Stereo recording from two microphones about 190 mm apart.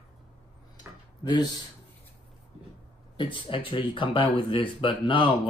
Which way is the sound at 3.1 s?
25° left (ahead or behind).